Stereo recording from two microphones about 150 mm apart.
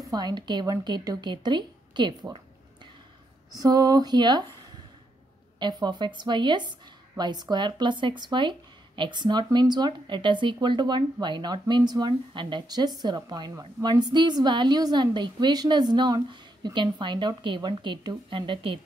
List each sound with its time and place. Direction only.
0.0 s a woman's voice: 25° right (ahead or behind)
3.5 s a woman's voice: 25° right (ahead or behind)